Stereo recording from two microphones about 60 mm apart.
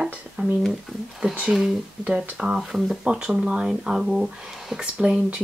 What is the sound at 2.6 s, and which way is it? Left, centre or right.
Speech, centre.